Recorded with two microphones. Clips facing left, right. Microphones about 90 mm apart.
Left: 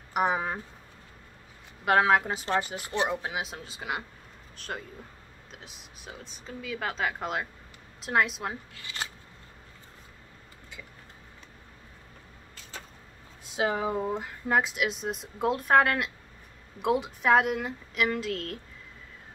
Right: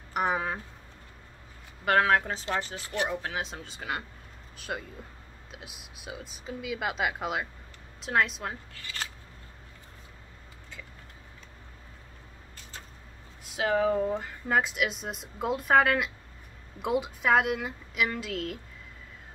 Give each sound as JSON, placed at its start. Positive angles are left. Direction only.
{"t": 0.1, "sound": "speech", "side_deg": 5}
{"t": 1.9, "sound": "speech", "side_deg": 5}
{"t": 2.9, "sound": "scissors", "side_deg": 25}
{"t": 3.2, "sound": "speech", "side_deg": 10}
{"t": 8.8, "sound": "scissors", "side_deg": 20}
{"t": 13.6, "sound": "speech", "side_deg": 20}
{"t": 14.1, "sound": "speech", "side_deg": 5}